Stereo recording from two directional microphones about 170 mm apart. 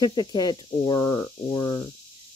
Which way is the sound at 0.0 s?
25° left (ahead or behind).